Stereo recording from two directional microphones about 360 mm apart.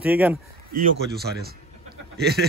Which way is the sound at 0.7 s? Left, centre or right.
Right.